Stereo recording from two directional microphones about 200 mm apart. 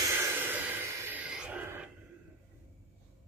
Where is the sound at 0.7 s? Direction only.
5° right (ahead or behind).